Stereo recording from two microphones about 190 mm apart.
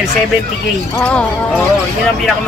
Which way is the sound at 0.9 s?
10° left (ahead or behind).